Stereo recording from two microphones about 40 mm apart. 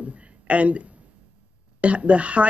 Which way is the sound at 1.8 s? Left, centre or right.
Right.